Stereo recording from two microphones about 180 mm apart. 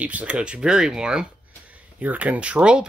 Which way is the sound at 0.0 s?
10° right (ahead or behind).